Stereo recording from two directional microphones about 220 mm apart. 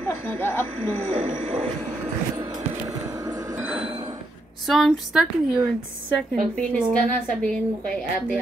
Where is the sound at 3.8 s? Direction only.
25° right (ahead or behind).